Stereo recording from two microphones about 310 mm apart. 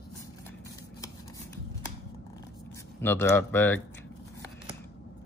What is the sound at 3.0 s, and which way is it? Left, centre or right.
Speech, centre.